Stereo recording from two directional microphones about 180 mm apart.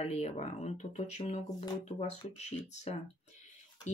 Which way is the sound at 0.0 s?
40° left (ahead or behind).